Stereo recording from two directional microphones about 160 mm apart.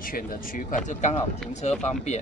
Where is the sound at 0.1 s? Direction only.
55° left (ahead or behind).